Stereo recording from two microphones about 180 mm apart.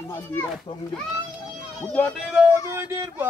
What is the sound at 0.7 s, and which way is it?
Speech, 35° left (ahead or behind).